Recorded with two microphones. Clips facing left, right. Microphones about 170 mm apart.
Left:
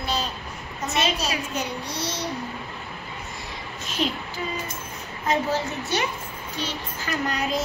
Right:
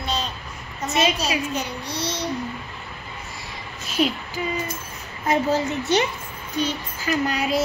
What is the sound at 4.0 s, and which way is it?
Child singing, 10° right (ahead or behind).